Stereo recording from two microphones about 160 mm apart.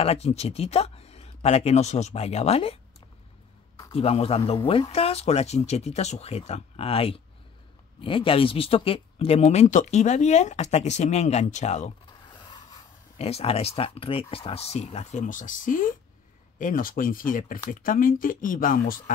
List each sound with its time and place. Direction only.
0.0 s speech: 40° left (ahead or behind)
3.9 s speech: 35° left (ahead or behind)
13.2 s speech: 40° left (ahead or behind); by 19.1 s 60° left (ahead or behind)